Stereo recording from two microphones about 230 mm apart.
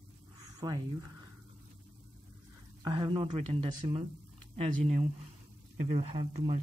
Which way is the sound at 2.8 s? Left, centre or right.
Centre.